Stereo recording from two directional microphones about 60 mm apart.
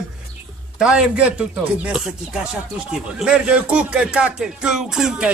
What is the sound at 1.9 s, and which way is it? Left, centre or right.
Speech, centre.